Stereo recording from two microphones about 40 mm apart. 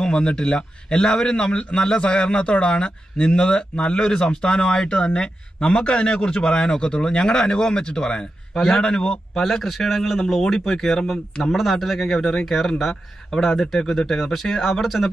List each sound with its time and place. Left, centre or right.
0.0 s a man's voice: left
4.0 s a man's voice: centre
8.5 s speech: centre
9.4 s speech: centre